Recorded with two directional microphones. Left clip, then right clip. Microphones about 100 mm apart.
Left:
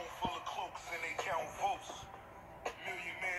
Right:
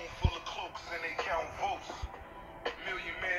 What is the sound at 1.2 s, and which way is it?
Music, 15° right (ahead or behind).